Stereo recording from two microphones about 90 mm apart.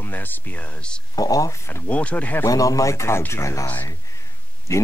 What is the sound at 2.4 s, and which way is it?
Speech, 40° left (ahead or behind).